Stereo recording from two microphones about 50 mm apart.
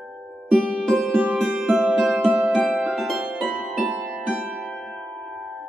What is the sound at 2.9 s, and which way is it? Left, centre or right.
Harp, centre.